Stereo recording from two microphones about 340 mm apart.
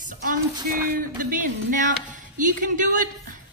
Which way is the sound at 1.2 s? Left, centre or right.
Right.